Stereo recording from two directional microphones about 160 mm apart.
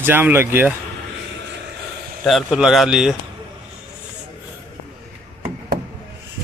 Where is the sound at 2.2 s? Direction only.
Centre (ahead or behind).